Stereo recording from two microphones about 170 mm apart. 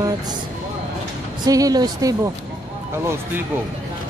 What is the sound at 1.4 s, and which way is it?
Speech, 20° right (ahead or behind).